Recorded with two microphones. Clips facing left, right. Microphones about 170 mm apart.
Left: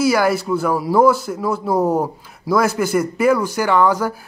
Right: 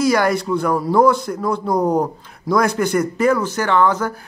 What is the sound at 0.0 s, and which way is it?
Speech, 5° left (ahead or behind).